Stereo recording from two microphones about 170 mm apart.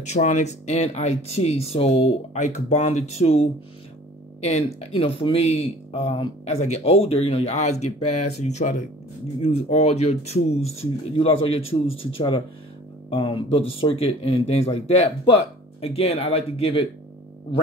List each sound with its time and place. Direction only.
0.0 s speech: 45° left (ahead or behind)